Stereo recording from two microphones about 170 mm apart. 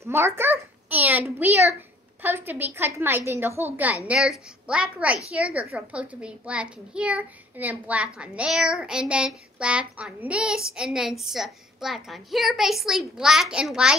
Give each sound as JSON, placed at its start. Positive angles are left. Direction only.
{"t": 0.0, "sound": "a child's voice", "side_deg": -15}